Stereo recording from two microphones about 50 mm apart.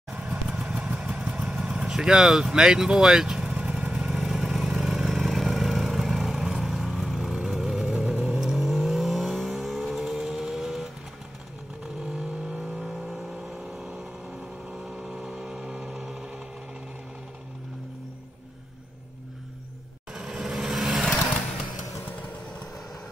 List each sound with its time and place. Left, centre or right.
0.1 s vehicle: centre
1.9 s speech: centre
3.4 s vehicle: right; by 7.3 s centre
7.3 s vehicle: centre
12.2 s vehicle: centre
20.2 s vehicle: centre